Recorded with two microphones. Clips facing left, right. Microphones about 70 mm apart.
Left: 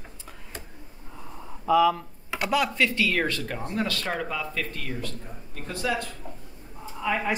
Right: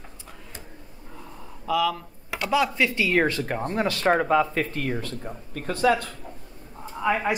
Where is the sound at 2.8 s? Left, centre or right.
Centre; by 5.3 s right.